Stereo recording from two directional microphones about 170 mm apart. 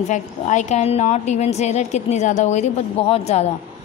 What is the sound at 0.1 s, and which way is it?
A woman's voice, 45° left (ahead or behind).